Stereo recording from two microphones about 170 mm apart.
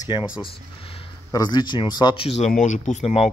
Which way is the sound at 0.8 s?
35° left (ahead or behind).